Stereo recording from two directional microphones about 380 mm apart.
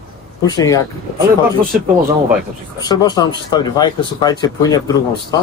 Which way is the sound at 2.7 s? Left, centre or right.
Centre.